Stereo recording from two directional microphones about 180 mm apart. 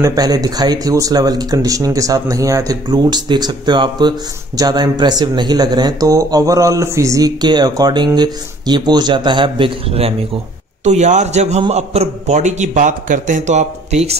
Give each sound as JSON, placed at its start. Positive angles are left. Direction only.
{"t": 0.0, "sound": "a man's voice", "side_deg": -20}